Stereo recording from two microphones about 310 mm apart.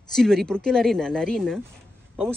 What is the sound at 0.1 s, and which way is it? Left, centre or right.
Speech, centre.